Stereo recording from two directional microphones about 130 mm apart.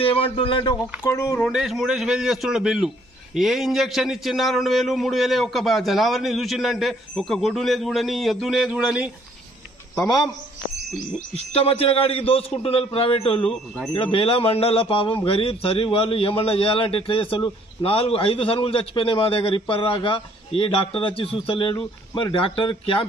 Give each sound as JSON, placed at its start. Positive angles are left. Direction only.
{"t": 0.0, "sound": "speech", "side_deg": 45}
{"t": 1.0, "sound": "speech", "side_deg": 20}
{"t": 1.4, "sound": "a man's voice", "side_deg": 0}
{"t": 9.9, "sound": "speech", "side_deg": 30}
{"t": 11.5, "sound": "a man's voice", "side_deg": 50}
{"t": 13.4, "sound": "a man's voice", "side_deg": 5}
{"t": 13.9, "sound": "a man's voice", "side_deg": 45}